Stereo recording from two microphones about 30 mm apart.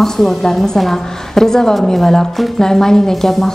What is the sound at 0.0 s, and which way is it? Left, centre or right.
A woman's voice, centre.